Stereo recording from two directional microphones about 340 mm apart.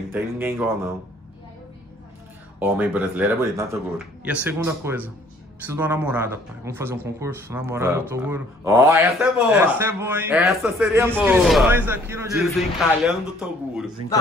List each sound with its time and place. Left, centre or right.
0.1 s speech: centre
2.6 s speech: centre